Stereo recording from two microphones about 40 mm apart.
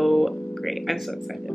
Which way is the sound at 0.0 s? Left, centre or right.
Centre.